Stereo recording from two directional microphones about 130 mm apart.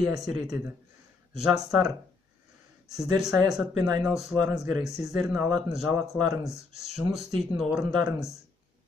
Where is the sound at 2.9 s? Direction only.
Centre (ahead or behind).